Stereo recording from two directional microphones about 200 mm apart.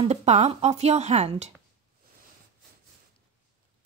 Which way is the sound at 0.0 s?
35° right (ahead or behind).